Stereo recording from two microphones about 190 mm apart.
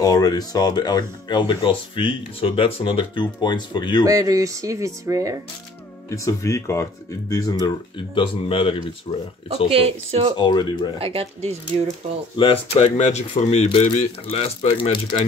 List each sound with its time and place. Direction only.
0.0 s speech: 20° left (ahead or behind)
4.0 s speech: 15° right (ahead or behind)
6.0 s speech: 15° left (ahead or behind)
9.7 s speech: 30° right (ahead or behind)
10.3 s speech: 25° left (ahead or behind)
11.0 s speech: 30° right (ahead or behind)
12.4 s speech: 30° left (ahead or behind)